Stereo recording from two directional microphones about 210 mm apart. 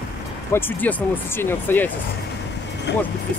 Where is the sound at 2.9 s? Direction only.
55° left (ahead or behind).